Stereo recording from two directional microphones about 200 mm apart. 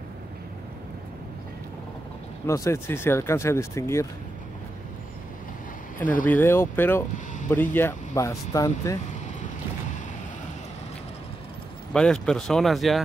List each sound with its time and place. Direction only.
2.4 s speech: 15° left (ahead or behind)
6.2 s speech: 10° left (ahead or behind)
11.9 s speech: 5° left (ahead or behind)